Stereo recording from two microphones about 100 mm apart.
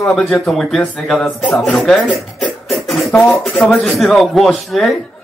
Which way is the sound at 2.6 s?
Centre (ahead or behind).